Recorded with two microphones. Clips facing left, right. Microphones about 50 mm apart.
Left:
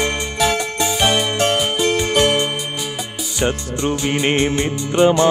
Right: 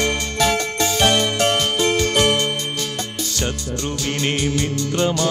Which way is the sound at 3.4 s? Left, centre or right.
Left.